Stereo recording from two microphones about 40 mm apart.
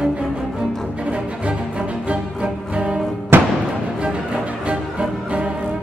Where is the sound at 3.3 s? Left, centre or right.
Right.